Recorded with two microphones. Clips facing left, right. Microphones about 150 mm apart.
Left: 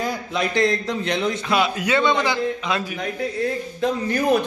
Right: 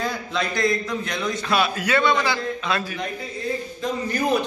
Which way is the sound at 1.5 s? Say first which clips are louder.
Even; 20° left (ahead or behind).